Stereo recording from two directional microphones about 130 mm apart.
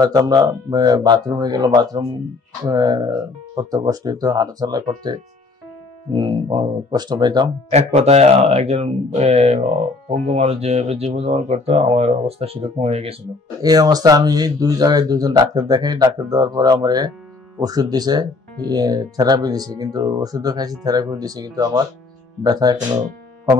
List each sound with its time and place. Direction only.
0.0 s speech: 30° right (ahead or behind)
7.7 s speech: 55° right (ahead or behind)
13.6 s speech: 30° right (ahead or behind)